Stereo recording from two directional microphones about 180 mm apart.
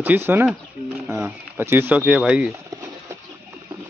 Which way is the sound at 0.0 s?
10° right (ahead or behind).